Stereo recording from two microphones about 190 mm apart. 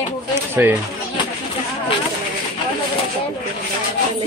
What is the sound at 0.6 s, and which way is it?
Speech, 10° right (ahead or behind).